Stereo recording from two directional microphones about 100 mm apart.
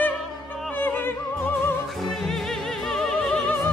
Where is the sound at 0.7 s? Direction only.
20° left (ahead or behind).